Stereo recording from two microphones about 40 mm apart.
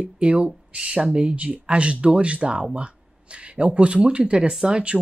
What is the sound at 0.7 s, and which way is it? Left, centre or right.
Speech, right.